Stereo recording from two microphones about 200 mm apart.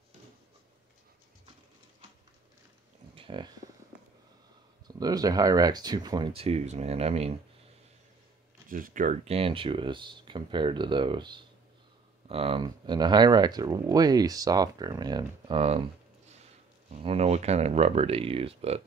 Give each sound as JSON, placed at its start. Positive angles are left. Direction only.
{"t": 3.2, "sound": "a sound", "side_deg": -25}
{"t": 4.8, "sound": "speech", "side_deg": -20}
{"t": 8.6, "sound": "speech", "side_deg": -45}
{"t": 16.9, "sound": "speech", "side_deg": -30}